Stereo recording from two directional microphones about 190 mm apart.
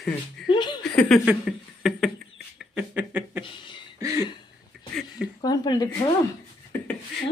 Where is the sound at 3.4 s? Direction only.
25° left (ahead or behind).